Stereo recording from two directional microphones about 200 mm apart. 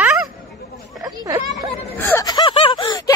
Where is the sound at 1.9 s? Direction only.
15° left (ahead or behind).